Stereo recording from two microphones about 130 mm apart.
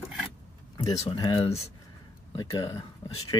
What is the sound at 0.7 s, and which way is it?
Speech, 45° left (ahead or behind).